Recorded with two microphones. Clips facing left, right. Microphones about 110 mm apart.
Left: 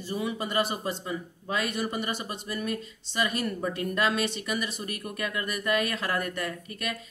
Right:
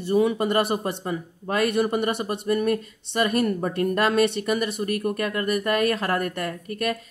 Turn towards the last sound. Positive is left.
turn(degrees=-50)  # may be behind; listen again after turning